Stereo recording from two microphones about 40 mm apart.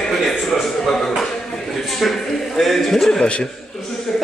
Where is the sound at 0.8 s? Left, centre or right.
Centre.